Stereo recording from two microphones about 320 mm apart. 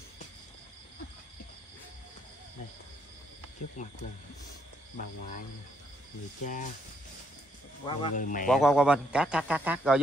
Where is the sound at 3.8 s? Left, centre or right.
Left.